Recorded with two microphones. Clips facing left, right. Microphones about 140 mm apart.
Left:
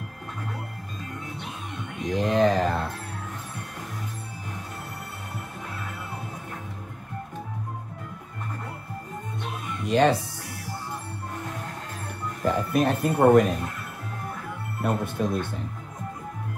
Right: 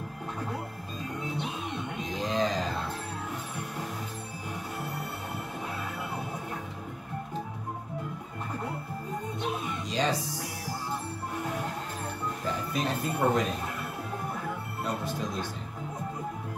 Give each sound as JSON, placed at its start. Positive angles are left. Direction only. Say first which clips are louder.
{"t": 2.0, "sound": "a sound", "louder": "left 8 dB", "side_deg": 60}
{"t": 9.8, "sound": "speech", "louder": "left 9 dB", "side_deg": 60}
{"t": 12.4, "sound": "speech", "louder": "left 9 dB", "side_deg": 55}
{"t": 14.8, "sound": "speech", "louder": "left 8 dB", "side_deg": 55}